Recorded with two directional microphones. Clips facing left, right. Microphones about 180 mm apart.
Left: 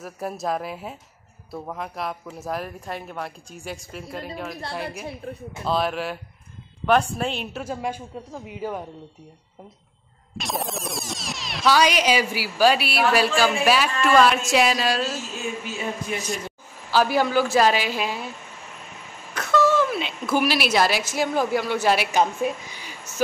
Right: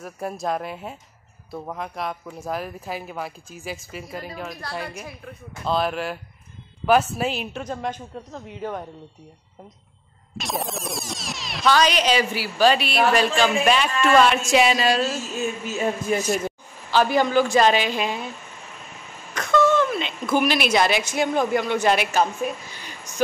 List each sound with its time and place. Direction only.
0.0 s a man's voice: centre (ahead or behind)
10.3 s speech: centre (ahead or behind)
15.6 s a man's voice: 45° right (ahead or behind)
16.9 s speech: 5° left (ahead or behind)
19.3 s a woman's voice: 5° left (ahead or behind)
22.1 s speech: 15° left (ahead or behind)